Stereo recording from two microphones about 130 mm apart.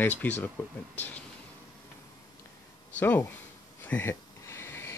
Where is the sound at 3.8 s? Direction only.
15° left (ahead or behind).